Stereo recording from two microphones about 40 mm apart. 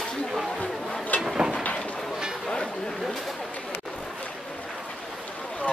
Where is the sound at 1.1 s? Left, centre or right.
Left.